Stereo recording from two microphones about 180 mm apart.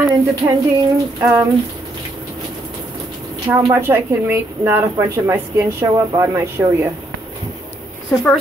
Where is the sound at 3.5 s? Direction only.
15° right (ahead or behind).